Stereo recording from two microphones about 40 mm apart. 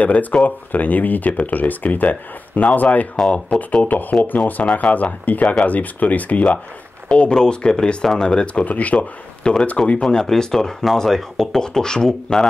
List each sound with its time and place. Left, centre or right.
0.0 s speech: left
3.3 s speech: left
7.1 s speech: left
8.6 s speech: left
10.1 s speech: centre
11.6 s speech: centre